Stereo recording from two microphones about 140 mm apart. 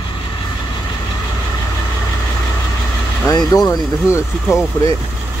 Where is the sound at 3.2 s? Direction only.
25° left (ahead or behind).